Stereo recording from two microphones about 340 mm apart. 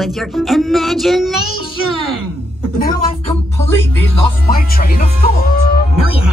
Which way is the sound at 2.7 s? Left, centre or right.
Left.